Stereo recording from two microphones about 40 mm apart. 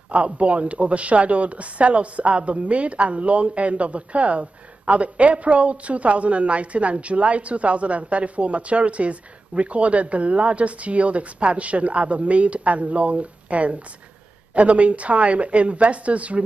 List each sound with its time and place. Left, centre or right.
0.1 s speech: right